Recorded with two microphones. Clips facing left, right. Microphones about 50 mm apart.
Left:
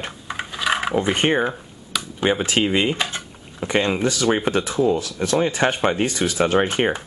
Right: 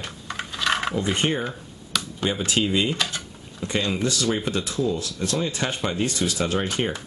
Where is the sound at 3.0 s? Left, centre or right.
Left.